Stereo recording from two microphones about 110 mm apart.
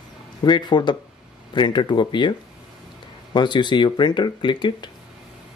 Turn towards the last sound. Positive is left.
turn(degrees=45)  # may be behind; listen again after turning